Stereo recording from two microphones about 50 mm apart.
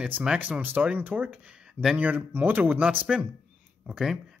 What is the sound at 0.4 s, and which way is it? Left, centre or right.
Speech, right.